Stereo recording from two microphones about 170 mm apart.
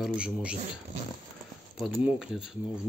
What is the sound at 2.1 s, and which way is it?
Speech, centre (ahead or behind).